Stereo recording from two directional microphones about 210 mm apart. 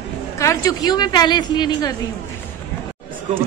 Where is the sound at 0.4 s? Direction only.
15° left (ahead or behind).